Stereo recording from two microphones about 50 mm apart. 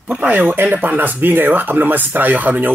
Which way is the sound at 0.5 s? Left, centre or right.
Right.